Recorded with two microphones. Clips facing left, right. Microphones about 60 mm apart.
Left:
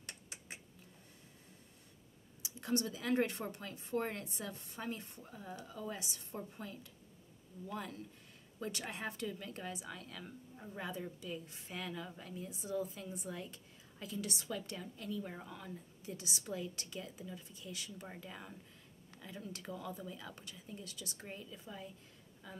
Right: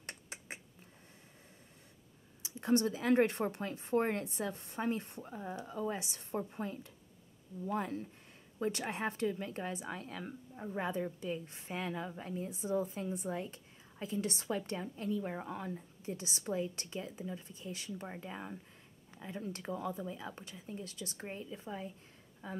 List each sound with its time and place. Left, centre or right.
0.0 s beatboxing: right
2.4 s speech: right